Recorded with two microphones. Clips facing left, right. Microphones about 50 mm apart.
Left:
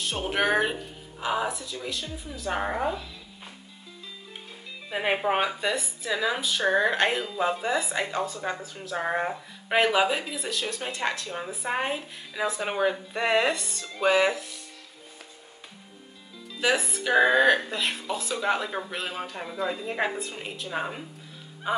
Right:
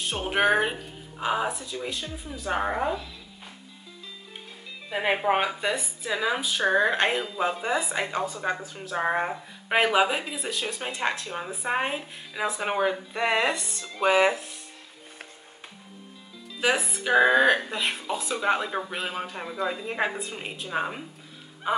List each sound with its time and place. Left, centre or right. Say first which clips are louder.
0.0 s speech: right 2 dB; centre
2.5 s a woman's voice: right 2 dB; centre
4.8 s a woman's voice: right 1 dB; centre
16.6 s speech: even; centre
17.6 s speech: right 1 dB; centre